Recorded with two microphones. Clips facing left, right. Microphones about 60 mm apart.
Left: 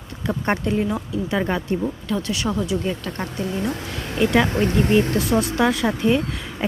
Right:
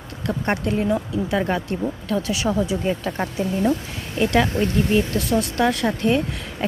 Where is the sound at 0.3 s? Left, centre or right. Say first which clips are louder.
Left 1 dB; centre.